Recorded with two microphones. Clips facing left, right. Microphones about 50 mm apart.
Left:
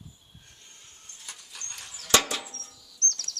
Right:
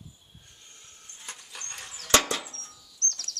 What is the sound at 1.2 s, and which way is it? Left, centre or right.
Music, right.